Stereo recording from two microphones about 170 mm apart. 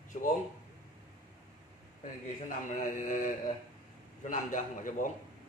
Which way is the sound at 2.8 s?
50° left (ahead or behind).